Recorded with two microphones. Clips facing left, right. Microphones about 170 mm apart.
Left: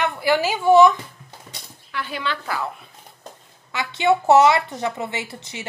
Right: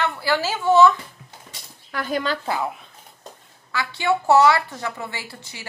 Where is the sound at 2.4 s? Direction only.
20° right (ahead or behind).